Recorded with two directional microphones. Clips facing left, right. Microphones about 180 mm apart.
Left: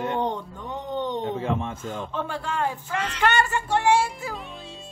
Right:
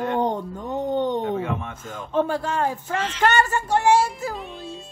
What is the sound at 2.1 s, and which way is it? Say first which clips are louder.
Speech: right 10 dB; 40° right (ahead or behind).